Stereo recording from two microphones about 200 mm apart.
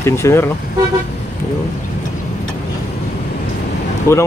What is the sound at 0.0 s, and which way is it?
Speech, 15° left (ahead or behind).